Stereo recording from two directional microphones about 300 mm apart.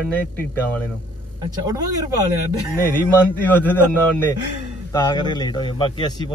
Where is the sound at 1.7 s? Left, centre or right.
Centre.